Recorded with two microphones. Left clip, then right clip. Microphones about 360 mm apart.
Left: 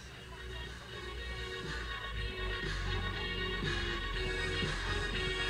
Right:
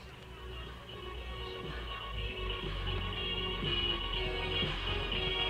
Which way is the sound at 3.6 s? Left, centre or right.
Centre.